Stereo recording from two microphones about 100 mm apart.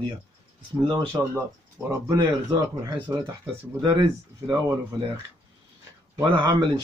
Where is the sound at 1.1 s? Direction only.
30° right (ahead or behind).